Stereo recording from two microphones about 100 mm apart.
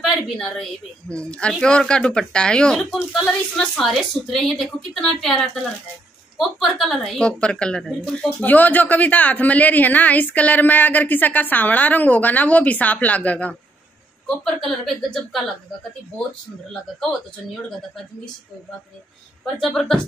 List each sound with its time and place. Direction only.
0.0 s a woman's voice: 5° left (ahead or behind)
19.6 s a woman's voice: 5° left (ahead or behind)